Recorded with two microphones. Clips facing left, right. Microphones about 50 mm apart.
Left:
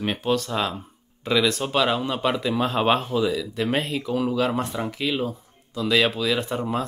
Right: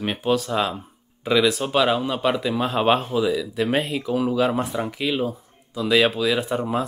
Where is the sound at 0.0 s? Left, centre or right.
Centre.